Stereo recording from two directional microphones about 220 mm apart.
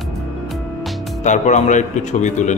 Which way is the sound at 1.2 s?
35° left (ahead or behind).